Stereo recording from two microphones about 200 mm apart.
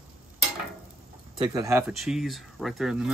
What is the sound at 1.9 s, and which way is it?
Speech, centre (ahead or behind).